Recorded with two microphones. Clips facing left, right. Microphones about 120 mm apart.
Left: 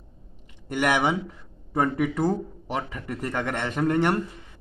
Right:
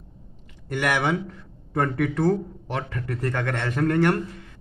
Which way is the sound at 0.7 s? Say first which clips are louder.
Left 1 dB; 15° left (ahead or behind).